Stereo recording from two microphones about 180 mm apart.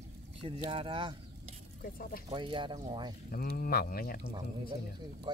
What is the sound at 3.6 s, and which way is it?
Speech, 55° left (ahead or behind).